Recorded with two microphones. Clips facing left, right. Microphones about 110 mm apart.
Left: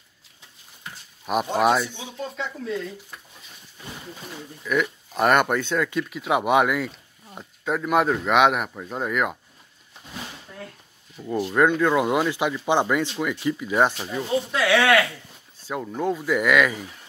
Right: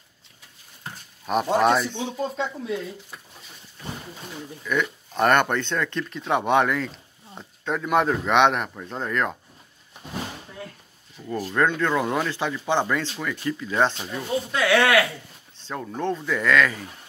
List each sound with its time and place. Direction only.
0.8 s a sound: 40° right (ahead or behind)
1.2 s speech: 5° left (ahead or behind)
2.6 s speech: 15° right (ahead or behind)
4.6 s speech: 5° left (ahead or behind)
11.2 s speech: 15° left (ahead or behind)
14.5 s speech: centre (ahead or behind)